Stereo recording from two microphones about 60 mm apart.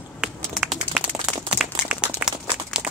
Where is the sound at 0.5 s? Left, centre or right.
Centre.